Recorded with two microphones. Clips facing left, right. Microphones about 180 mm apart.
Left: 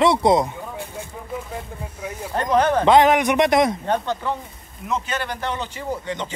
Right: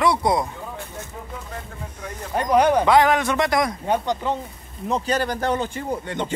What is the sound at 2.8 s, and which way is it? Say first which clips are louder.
Speech: left 2 dB; 20° left (ahead or behind).